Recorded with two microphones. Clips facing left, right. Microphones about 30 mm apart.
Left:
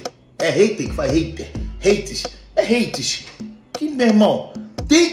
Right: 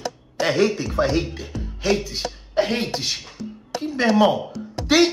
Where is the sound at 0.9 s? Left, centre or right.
Right.